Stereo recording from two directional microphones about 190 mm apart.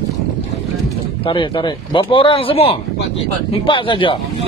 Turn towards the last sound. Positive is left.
turn(degrees=25)  # may be behind; listen again after turning